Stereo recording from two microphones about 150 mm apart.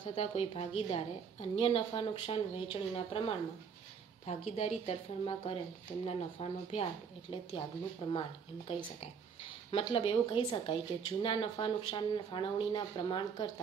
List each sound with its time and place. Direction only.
0.0 s a woman's voice: 40° left (ahead or behind)